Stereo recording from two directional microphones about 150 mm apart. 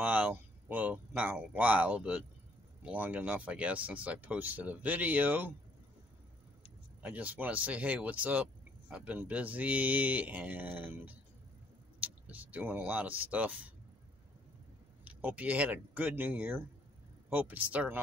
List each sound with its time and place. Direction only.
0.0 s speech: 10° right (ahead or behind)
7.0 s speech: 10° right (ahead or behind)
15.0 s speech: 10° right (ahead or behind)